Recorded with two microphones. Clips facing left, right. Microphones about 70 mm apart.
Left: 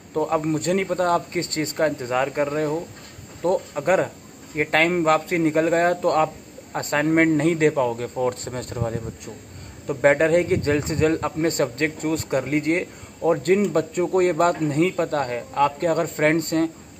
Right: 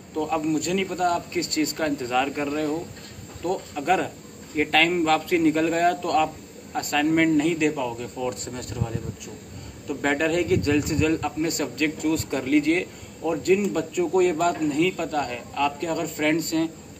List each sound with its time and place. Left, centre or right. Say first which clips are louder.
0.1 s a man's voice: left 2 dB; left
13.2 s a man's voice: left 3 dB; left